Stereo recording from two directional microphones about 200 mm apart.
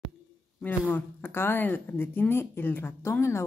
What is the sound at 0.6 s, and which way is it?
A woman's voice, 10° left (ahead or behind).